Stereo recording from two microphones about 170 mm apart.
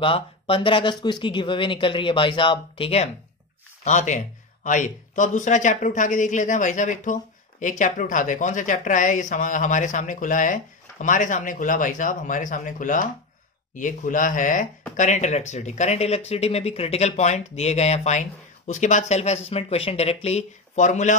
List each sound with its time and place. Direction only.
0.0 s speech: 30° left (ahead or behind)
3.8 s speech: 45° left (ahead or behind)